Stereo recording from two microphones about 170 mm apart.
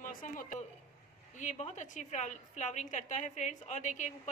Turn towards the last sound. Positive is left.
turn(degrees=45)  # may be behind; listen again after turning